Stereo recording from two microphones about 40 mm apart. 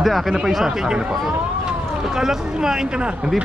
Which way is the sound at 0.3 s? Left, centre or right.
Centre.